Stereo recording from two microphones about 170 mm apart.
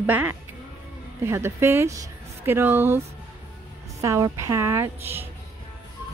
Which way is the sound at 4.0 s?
20° right (ahead or behind).